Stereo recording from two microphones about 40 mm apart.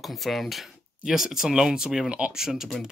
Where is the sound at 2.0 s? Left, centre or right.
Right.